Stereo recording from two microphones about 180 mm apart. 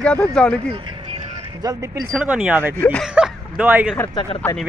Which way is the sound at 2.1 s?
5° right (ahead or behind).